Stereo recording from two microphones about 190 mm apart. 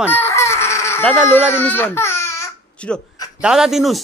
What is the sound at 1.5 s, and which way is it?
Baby cry, 10° left (ahead or behind).